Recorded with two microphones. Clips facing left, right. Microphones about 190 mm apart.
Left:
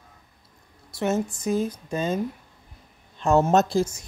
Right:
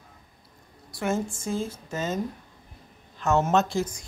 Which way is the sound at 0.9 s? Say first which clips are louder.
Left 3 dB; 20° left (ahead or behind).